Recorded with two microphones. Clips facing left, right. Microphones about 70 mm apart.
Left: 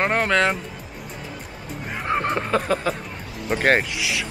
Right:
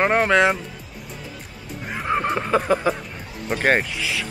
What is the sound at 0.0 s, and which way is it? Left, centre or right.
Speech, centre.